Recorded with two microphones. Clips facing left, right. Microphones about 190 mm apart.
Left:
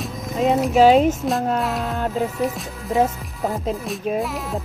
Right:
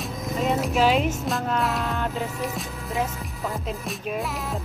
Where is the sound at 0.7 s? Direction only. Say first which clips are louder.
Left 8 dB; 40° left (ahead or behind).